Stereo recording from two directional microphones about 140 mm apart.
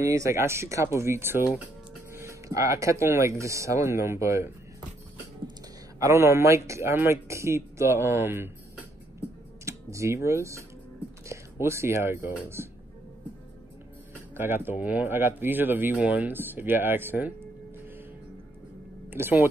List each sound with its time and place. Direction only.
0.0 s speech: 20° right (ahead or behind)
5.9 s speech: 20° right (ahead or behind)
9.7 s speech: 20° right (ahead or behind)
14.3 s speech: 15° right (ahead or behind)
19.0 s speech: 15° right (ahead or behind)